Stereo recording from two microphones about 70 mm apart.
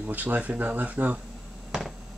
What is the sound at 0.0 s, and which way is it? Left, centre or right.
Speech, right.